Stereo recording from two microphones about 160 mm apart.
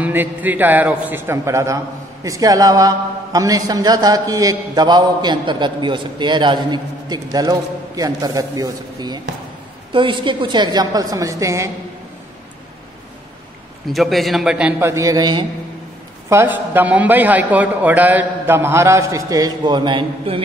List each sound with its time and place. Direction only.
0.0 s a man's voice: 10° right (ahead or behind)
13.8 s a man's voice: centre (ahead or behind)
14.8 s a man's voice: 15° right (ahead or behind)
16.3 s a man's voice: 15° right (ahead or behind); by 20.4 s 35° right (ahead or behind)